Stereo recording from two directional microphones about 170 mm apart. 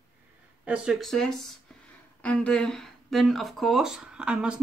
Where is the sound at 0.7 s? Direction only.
Centre (ahead or behind).